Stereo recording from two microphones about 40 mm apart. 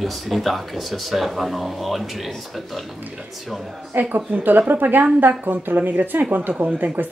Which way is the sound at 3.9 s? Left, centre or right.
Right.